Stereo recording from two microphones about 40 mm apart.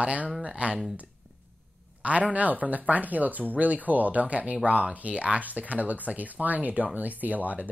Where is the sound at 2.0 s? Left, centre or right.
Right.